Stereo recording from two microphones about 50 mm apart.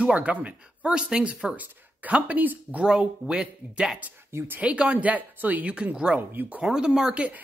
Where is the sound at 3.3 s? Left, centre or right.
Centre.